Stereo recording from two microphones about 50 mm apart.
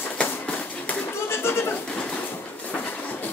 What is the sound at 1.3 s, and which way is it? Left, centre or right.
Goat, left.